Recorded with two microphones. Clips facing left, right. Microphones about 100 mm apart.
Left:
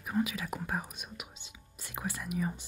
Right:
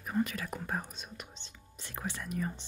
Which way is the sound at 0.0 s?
5° left (ahead or behind).